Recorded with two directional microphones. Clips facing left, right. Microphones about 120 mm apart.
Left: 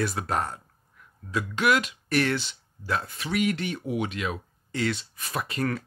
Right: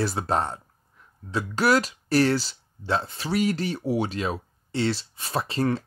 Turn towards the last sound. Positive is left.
turn(degrees=-30)  # may be behind; listen again after turning